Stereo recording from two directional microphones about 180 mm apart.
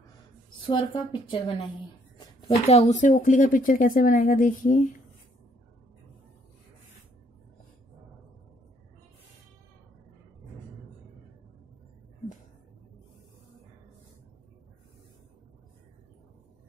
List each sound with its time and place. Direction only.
0.7 s a woman's voice: 30° left (ahead or behind); by 4.8 s 45° left (ahead or behind)